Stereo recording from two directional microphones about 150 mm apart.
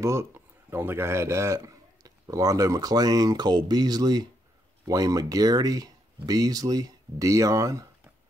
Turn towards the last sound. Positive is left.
turn(degrees=-20)  # may be behind; listen again after turning